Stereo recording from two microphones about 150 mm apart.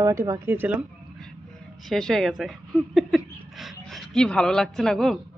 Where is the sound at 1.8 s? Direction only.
5° left (ahead or behind).